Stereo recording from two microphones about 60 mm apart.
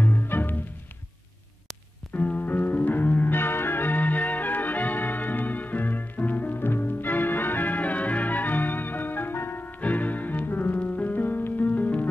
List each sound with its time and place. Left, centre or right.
0.0 s music: left
2.1 s music: left